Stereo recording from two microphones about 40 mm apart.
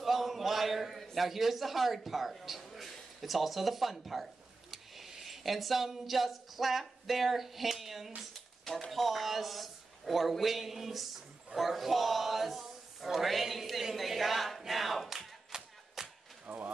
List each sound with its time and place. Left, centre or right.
0.0 s a sound: centre
1.1 s speech: centre
15.0 s clapping: centre
16.4 s speech: right